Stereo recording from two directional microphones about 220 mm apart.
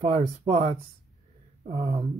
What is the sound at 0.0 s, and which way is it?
Speech, 30° right (ahead or behind).